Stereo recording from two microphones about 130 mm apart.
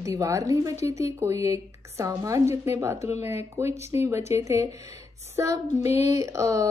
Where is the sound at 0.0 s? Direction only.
25° right (ahead or behind).